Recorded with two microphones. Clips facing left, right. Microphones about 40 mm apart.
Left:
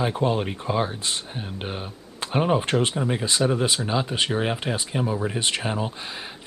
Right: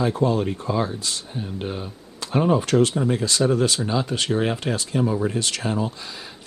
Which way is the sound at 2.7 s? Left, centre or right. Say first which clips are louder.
Right 4 dB; centre.